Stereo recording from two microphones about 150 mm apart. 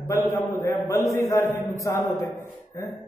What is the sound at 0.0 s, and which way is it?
A man's voice, 15° left (ahead or behind).